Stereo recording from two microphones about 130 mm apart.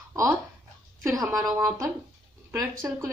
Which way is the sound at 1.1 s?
25° right (ahead or behind).